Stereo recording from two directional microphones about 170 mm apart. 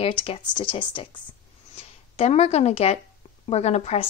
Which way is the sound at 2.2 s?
40° left (ahead or behind).